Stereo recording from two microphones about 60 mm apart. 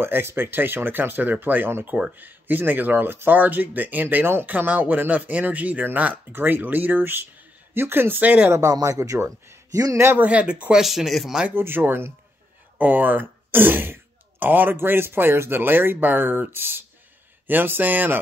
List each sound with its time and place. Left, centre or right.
0.0 s speech: right
8.5 s speech: right
10.1 s speech: right
10.8 s speech: centre
11.5 s speech: right